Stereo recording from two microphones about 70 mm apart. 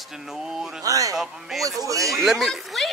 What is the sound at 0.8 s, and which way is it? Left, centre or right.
Speech, right.